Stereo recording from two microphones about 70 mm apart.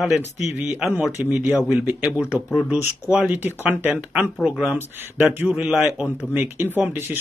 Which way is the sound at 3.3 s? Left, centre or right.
Right.